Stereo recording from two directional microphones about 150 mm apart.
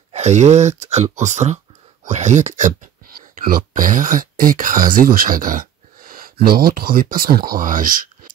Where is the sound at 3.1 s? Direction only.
75° right (ahead or behind).